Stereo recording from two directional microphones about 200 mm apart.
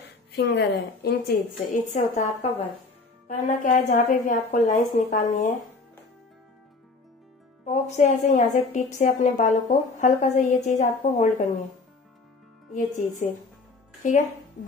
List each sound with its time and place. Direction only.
0.0 s a woman's voice: 60° left (ahead or behind)
1.9 s a woman's voice: 35° left (ahead or behind)
3.3 s a woman's voice: 40° left (ahead or behind)
7.6 s a woman's voice: 35° left (ahead or behind)
12.7 s a woman's voice: 40° left (ahead or behind)